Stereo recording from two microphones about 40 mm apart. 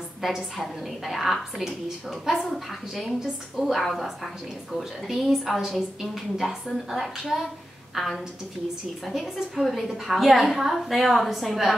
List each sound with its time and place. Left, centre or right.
1.0 s a woman's voice: centre
3.2 s a woman's voice: centre